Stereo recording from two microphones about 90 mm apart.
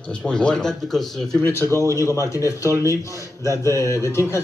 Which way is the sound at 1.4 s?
25° left (ahead or behind).